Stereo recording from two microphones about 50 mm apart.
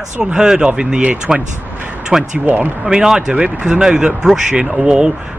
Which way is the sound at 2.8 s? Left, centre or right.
Centre.